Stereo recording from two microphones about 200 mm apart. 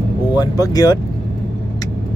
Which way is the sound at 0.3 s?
20° left (ahead or behind).